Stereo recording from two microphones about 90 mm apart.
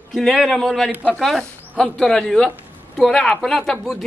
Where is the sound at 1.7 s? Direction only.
15° left (ahead or behind).